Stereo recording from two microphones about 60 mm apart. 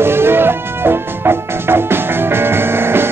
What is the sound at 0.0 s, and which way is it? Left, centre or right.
Music, right.